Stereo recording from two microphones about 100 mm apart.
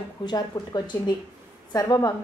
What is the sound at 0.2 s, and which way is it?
A woman's voice, 45° left (ahead or behind).